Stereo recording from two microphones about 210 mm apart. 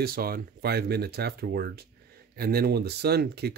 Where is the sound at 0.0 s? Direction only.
45° right (ahead or behind).